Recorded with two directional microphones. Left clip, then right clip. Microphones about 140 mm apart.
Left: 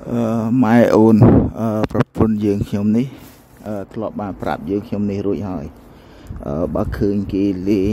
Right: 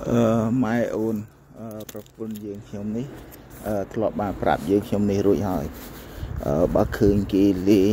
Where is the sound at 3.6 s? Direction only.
35° left (ahead or behind).